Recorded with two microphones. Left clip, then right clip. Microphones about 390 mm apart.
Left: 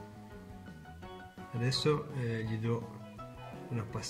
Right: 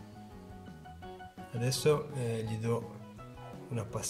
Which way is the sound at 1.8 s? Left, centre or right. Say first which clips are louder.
Right 3 dB; right.